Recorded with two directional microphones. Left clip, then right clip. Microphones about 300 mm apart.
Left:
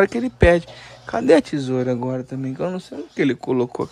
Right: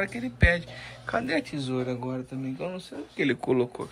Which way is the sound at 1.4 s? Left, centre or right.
Left.